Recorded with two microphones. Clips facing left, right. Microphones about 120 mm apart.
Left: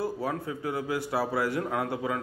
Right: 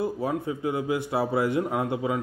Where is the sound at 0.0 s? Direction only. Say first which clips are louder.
Right 3 dB; 20° right (ahead or behind).